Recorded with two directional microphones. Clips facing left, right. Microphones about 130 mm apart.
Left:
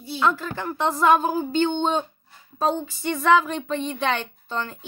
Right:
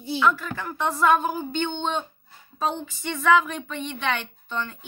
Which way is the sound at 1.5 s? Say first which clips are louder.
Left 5 dB; 40° left (ahead or behind).